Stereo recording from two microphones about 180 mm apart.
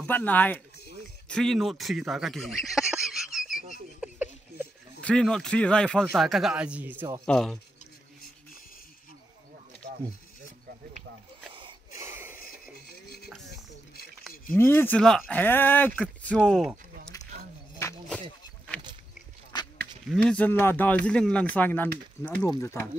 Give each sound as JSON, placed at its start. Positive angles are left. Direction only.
{"t": 0.0, "sound": "speech", "side_deg": 10}
{"t": 4.0, "sound": "a sound", "side_deg": -10}
{"t": 5.0, "sound": "speech", "side_deg": 5}
{"t": 7.2, "sound": "speech", "side_deg": 0}
{"t": 12.0, "sound": "a sound", "side_deg": -10}
{"t": 14.5, "sound": "speech", "side_deg": 10}
{"t": 20.1, "sound": "speech", "side_deg": 5}